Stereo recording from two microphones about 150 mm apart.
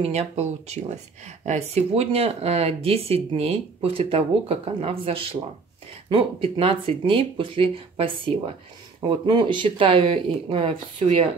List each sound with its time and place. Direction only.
0.0 s speech: 45° right (ahead or behind)
9.1 s speech: 30° right (ahead or behind)